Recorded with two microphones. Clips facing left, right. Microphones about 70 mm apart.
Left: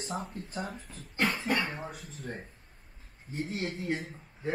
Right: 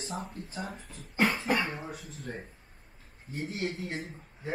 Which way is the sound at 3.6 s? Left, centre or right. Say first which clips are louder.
Left 2 dB; left.